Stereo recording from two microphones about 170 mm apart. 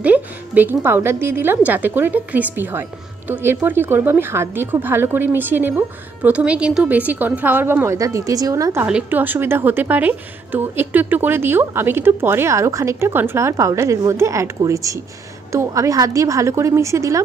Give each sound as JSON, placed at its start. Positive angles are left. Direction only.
{"t": 0.0, "sound": "a woman's voice", "side_deg": -10}
{"t": 8.8, "sound": "a woman's voice", "side_deg": -10}